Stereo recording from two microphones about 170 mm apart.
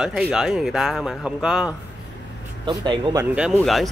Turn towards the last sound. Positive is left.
turn(degrees=0)  # may be behind; listen again after turning